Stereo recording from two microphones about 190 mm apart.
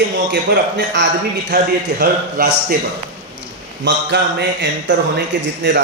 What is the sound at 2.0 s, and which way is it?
Speech, 50° right (ahead or behind).